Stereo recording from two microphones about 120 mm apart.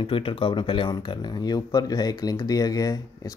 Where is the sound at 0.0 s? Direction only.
45° left (ahead or behind).